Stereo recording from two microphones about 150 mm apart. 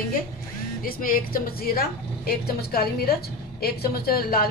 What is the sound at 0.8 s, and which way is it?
A woman's voice, 70° left (ahead or behind).